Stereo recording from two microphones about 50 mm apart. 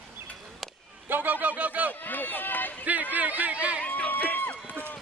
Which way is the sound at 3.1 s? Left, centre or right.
Right.